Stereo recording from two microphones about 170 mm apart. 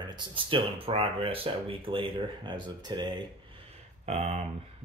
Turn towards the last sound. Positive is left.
turn(degrees=-40)  # may be behind; listen again after turning